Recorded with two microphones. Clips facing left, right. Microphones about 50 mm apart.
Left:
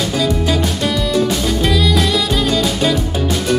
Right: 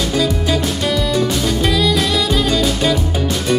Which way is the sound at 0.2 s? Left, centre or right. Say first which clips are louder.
Left 2 dB; centre.